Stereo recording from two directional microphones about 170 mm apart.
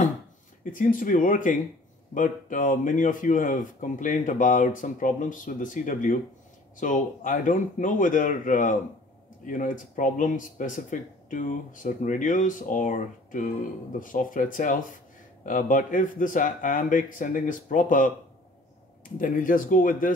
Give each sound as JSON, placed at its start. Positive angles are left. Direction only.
{"t": 0.7, "sound": "speech", "side_deg": 50}
{"t": 19.1, "sound": "speech", "side_deg": 55}